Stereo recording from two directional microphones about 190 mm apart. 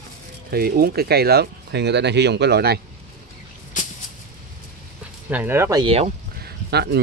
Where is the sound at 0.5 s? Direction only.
55° right (ahead or behind).